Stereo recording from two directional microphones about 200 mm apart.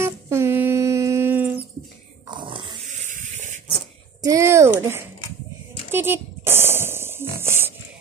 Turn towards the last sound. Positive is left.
turn(degrees=-10)  # may be behind; listen again after turning